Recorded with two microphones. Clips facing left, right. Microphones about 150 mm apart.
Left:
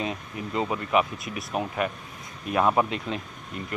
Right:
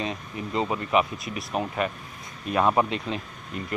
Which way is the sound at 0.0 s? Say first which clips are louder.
Even; 5° left (ahead or behind).